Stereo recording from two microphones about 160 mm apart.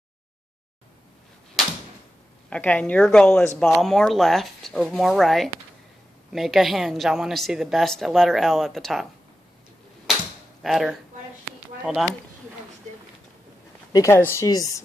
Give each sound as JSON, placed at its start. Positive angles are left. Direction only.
{"t": 2.5, "sound": "speech", "side_deg": 10}
{"t": 10.6, "sound": "a woman's voice", "side_deg": 0}
{"t": 13.9, "sound": "speech", "side_deg": 20}